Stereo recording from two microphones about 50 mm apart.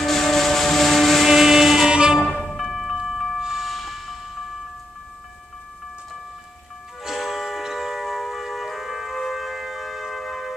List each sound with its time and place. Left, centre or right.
0.0 s music: centre
1.9 s music: centre
2.5 s music: centre
3.6 s vehicle: centre
7.0 s music: centre